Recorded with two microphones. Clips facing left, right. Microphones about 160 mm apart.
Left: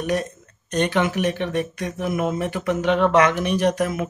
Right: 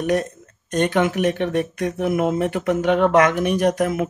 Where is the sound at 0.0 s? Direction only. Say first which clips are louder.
Right 3 dB; 55° right (ahead or behind).